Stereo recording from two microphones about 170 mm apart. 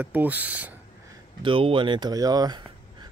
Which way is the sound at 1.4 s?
30° right (ahead or behind).